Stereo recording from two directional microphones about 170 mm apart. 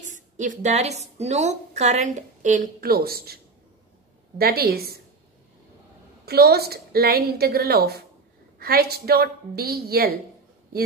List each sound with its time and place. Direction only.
0.0 s a woman's voice: 50° right (ahead or behind); by 3.3 s 65° right (ahead or behind)
4.4 s a woman's voice: 65° right (ahead or behind)
6.2 s a woman's voice: 70° right (ahead or behind)